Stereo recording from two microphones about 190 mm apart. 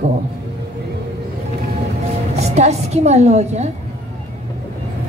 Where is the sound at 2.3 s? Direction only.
35° right (ahead or behind).